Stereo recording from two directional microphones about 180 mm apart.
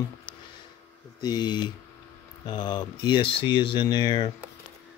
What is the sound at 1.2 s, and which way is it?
Speech, 25° left (ahead or behind).